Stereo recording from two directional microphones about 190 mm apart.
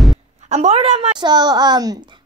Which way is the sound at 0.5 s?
35° right (ahead or behind).